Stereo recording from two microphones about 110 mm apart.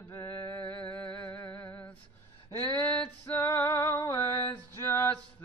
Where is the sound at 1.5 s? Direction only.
20° left (ahead or behind).